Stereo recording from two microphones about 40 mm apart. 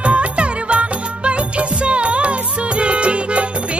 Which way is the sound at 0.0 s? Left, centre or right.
Right.